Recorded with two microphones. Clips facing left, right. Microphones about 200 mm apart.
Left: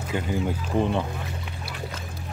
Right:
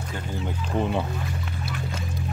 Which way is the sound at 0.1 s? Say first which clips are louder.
Left 7 dB; 10° left (ahead or behind).